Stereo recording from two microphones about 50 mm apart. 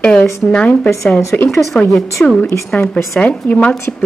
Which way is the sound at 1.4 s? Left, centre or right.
Centre.